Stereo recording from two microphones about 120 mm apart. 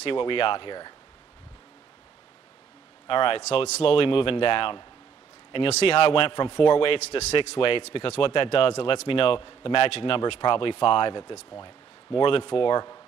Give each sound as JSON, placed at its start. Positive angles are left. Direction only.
{"t": 0.0, "sound": "speech", "side_deg": 45}
{"t": 3.1, "sound": "speech", "side_deg": 45}
{"t": 3.4, "sound": "speech", "side_deg": 65}
{"t": 5.5, "sound": "speech", "side_deg": 55}
{"t": 7.0, "sound": "a man's voice", "side_deg": 65}
{"t": 7.3, "sound": "speech", "side_deg": 50}